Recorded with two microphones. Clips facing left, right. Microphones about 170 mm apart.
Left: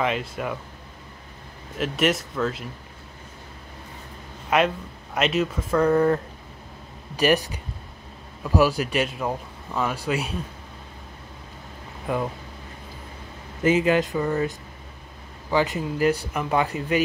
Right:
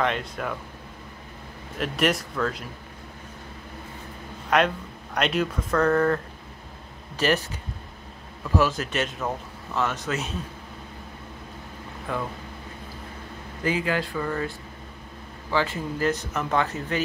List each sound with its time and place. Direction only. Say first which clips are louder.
0.0 s speech: left 1 dB; 5° left (ahead or behind)
1.8 s speech: left 1 dB; centre (ahead or behind)
4.5 s speech: left 1 dB; 5° left (ahead or behind)
12.1 s speech: left 4 dB; 15° left (ahead or behind)
13.6 s speech: left 6 dB; 20° left (ahead or behind)
15.5 s speech: left 3 dB; 15° left (ahead or behind)